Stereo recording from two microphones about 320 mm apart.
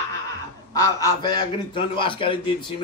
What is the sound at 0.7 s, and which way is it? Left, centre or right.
Speech, centre.